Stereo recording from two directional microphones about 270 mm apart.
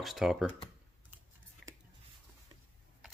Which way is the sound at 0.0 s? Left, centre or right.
Centre.